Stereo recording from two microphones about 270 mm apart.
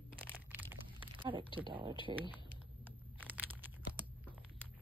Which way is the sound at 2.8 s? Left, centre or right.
Centre.